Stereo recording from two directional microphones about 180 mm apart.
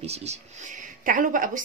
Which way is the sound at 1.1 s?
50° right (ahead or behind).